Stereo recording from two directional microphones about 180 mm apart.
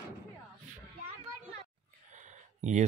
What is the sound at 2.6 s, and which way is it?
Speech, 40° right (ahead or behind).